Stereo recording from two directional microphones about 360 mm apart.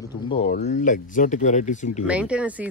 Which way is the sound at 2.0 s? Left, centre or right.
Centre.